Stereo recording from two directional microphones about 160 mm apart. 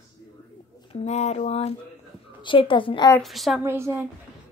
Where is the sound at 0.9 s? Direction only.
45° left (ahead or behind).